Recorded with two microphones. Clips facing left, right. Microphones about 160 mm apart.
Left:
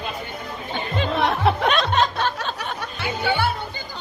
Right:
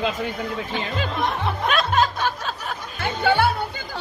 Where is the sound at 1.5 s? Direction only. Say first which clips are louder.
Left 7 dB; 80° left.